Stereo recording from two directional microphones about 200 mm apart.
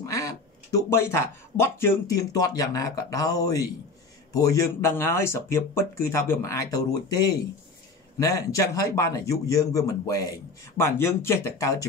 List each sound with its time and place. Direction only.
0.0 s a man's voice: 15° left (ahead or behind)
8.2 s a man's voice: 15° left (ahead or behind)